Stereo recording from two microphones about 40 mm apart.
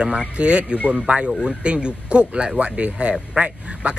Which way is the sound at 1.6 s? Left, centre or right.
Right.